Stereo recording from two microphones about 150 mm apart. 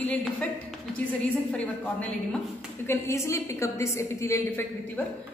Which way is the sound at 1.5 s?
10° left (ahead or behind).